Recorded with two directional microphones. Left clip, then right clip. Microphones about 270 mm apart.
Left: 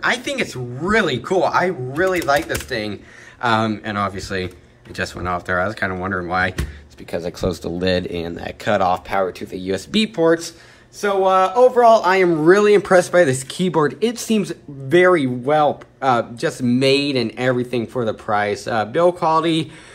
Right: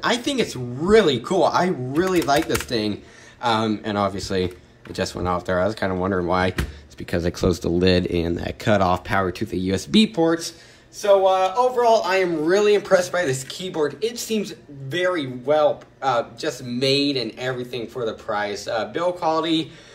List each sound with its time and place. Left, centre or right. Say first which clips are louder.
0.0 s speech: left 2 dB; centre
3.4 s speech: left 3 dB; centre
7.1 s speech: right 1 dB; right
10.1 s speech: left 4 dB; centre
11.0 s speech: left 1 dB; centre